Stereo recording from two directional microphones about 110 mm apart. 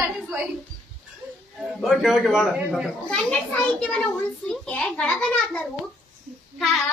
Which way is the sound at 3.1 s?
10° left (ahead or behind).